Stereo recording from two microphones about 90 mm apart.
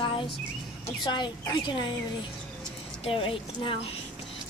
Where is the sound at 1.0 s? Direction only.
55° left (ahead or behind).